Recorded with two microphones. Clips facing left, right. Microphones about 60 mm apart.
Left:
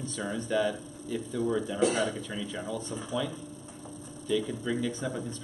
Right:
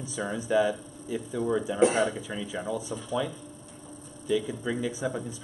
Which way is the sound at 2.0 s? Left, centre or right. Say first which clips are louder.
Right 2 dB; centre.